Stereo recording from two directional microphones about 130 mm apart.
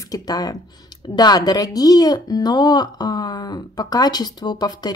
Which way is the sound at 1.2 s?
30° left (ahead or behind).